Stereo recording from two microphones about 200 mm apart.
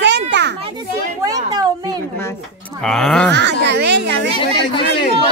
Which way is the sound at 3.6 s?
60° right (ahead or behind).